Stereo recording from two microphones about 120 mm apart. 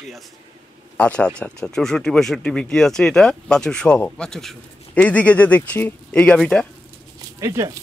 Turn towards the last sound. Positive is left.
turn(degrees=-25)  # may be behind; listen again after turning